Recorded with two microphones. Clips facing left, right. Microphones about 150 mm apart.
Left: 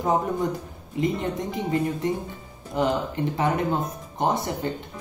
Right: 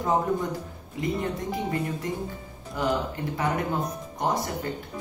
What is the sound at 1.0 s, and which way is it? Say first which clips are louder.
Speech: left 2 dB; 20° left (ahead or behind).